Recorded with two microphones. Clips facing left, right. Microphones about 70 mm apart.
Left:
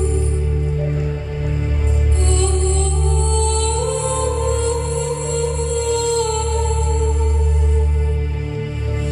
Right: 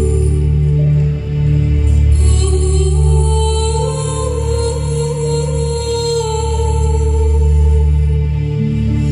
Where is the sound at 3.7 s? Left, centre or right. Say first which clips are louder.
Right 2 dB; left.